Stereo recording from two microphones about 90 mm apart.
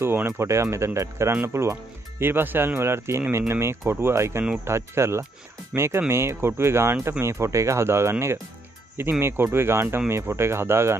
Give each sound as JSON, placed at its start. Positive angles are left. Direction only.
{"t": 0.0, "sound": "speech", "side_deg": -25}